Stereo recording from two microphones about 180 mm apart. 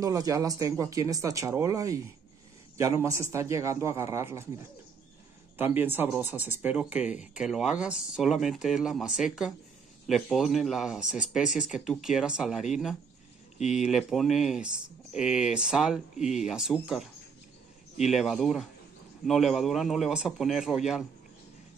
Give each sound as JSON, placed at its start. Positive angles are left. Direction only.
{"t": 0.0, "sound": "a man's voice", "side_deg": -20}
{"t": 5.6, "sound": "a man's voice", "side_deg": -10}